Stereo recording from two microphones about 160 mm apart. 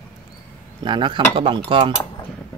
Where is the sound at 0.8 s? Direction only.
30° right (ahead or behind).